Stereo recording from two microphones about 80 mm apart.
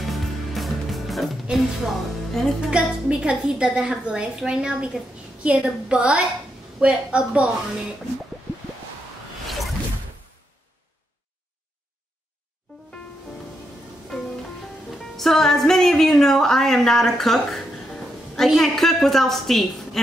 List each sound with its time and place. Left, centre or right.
0.0 s music: centre
2.3 s speech: centre
2.7 s a woman's voice: centre
15.1 s a woman's voice: centre